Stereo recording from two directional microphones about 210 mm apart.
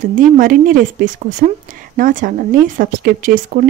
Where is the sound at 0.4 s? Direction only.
40° right (ahead or behind).